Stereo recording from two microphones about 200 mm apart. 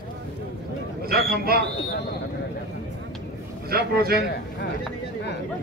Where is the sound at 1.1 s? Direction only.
50° right (ahead or behind).